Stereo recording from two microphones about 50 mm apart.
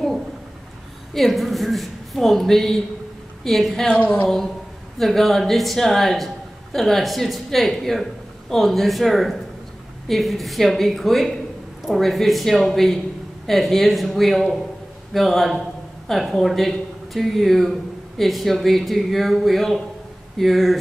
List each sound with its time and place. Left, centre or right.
1.1 s speech: centre
3.9 s a sound: left
4.9 s speech: centre